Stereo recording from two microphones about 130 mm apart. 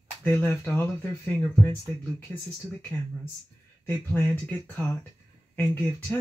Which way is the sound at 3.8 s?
15° left (ahead or behind).